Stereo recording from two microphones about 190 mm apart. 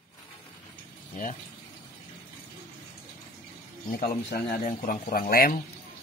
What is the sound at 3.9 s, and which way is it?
Speech, 50° left (ahead or behind).